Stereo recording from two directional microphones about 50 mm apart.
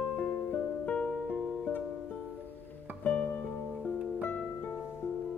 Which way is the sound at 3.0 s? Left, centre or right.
Left.